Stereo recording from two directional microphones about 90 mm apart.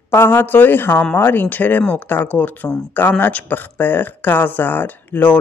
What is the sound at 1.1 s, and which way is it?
Speech, 20° left (ahead or behind).